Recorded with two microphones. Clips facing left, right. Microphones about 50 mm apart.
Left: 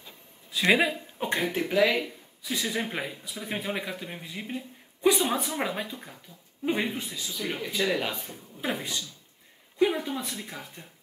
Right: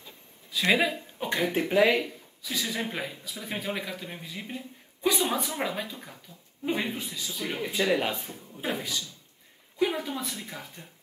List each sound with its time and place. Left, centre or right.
0.6 s a man's voice: centre
1.7 s speech: centre
2.0 s a sound: centre
2.5 s speech: centre
8.6 s speech: left
9.8 s speech: centre